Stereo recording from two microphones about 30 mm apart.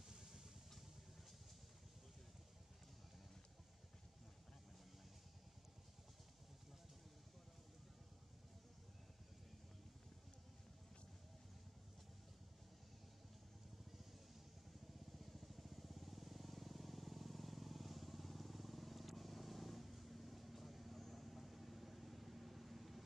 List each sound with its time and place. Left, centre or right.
0.1 s vehicle: centre
15.1 s vehicle: centre